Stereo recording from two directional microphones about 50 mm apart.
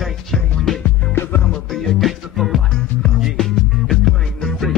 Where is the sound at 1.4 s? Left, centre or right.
Centre.